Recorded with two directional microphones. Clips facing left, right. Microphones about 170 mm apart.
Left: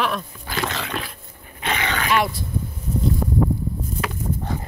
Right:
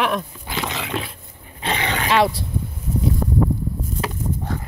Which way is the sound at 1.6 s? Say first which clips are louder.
Right 1 dB; 30° right (ahead or behind).